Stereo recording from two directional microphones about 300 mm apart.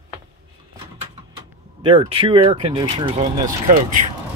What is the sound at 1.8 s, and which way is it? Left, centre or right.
Speech, centre.